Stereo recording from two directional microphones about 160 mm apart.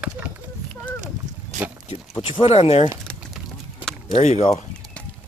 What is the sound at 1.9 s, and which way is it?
Speech, 35° left (ahead or behind).